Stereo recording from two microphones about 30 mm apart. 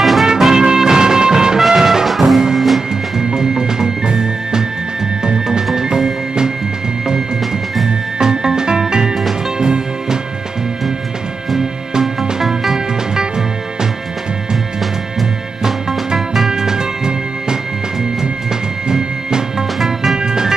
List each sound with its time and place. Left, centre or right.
0.0 s music: centre
0.5 s music: centre
1.6 s music: centre
3.2 s music: centre
8.2 s music: right
12.2 s music: centre
12.7 s music: right
16.4 s music: centre
18.9 s music: right
19.8 s music: centre